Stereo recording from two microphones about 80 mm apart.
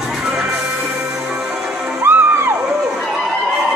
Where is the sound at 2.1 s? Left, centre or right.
Right.